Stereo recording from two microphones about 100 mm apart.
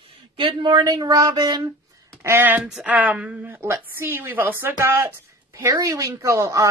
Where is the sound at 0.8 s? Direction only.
40° right (ahead or behind).